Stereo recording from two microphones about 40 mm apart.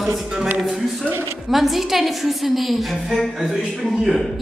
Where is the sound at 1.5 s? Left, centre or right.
Centre.